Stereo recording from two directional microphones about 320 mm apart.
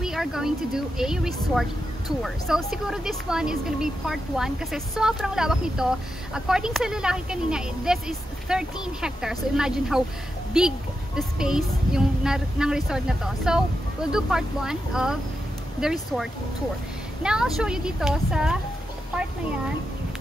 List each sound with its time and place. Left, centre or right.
0.0 s speech: centre
11.1 s speech: centre